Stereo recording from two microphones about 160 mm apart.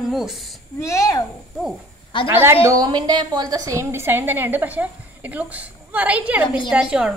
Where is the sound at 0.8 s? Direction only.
20° left (ahead or behind).